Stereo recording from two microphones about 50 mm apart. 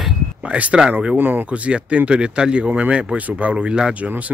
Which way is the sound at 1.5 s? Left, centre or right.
Right.